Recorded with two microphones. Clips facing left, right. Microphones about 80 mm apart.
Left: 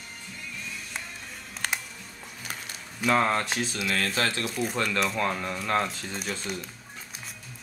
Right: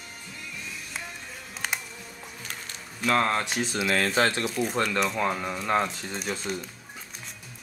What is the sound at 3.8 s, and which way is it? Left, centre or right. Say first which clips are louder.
Speech: right 5 dB; right.